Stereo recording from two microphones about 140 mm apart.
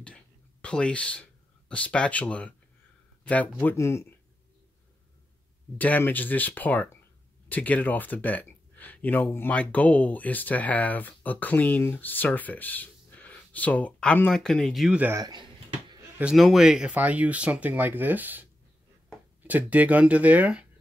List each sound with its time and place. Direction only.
0.0 s a sound: 10° left (ahead or behind)
3.6 s speech: 20° left (ahead or behind)
5.8 s speech: 10° left (ahead or behind)
15.0 s speech: 15° right (ahead or behind)
16.2 s speech: 5° right (ahead or behind)